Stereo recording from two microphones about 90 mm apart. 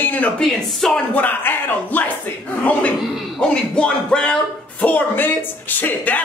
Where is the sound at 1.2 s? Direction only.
20° left (ahead or behind).